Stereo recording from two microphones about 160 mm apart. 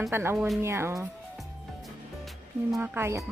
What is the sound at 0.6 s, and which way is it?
Speech, 15° right (ahead or behind).